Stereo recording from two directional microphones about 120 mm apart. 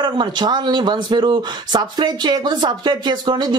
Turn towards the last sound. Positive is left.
turn(degrees=-40)  # may be behind; listen again after turning